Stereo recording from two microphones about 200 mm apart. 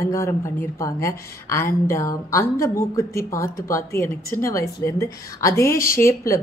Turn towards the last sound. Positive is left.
turn(degrees=15)  # may be behind; listen again after turning